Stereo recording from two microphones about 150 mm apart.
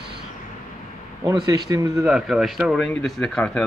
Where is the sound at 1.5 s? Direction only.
20° right (ahead or behind).